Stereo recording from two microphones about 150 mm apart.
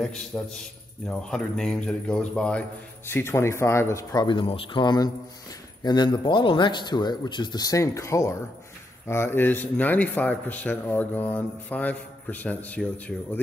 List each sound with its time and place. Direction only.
0.0 s speech: 5° left (ahead or behind)
3.1 s a man's voice: 15° left (ahead or behind)